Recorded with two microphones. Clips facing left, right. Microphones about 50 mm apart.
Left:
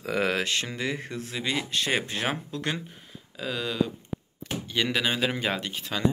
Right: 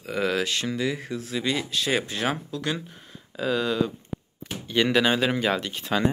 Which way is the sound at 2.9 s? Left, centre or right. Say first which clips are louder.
Right 1 dB; centre.